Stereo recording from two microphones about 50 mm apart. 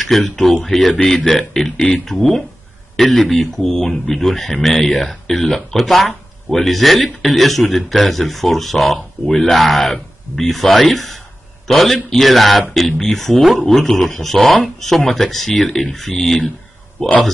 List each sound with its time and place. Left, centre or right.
0.0 s a man's voice: centre
14.4 s speech: left
14.9 s speech: centre